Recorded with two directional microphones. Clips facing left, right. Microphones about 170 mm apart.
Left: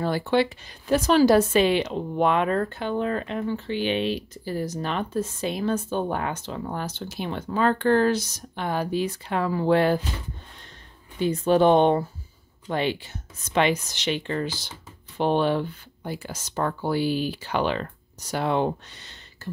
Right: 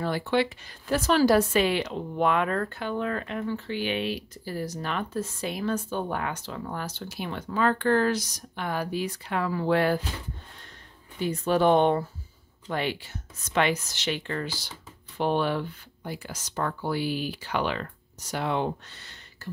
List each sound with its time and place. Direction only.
0.0 s speech: 30° left (ahead or behind)
0.7 s a woman's voice: 20° left (ahead or behind)
11.1 s a woman's voice: 25° left (ahead or behind)
18.9 s a sound: 20° left (ahead or behind)